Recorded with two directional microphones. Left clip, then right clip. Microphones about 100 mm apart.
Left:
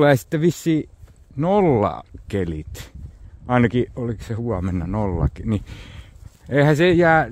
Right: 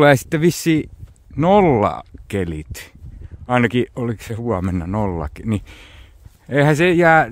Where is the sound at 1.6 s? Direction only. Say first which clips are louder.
Right 3 dB; 35° right (ahead or behind).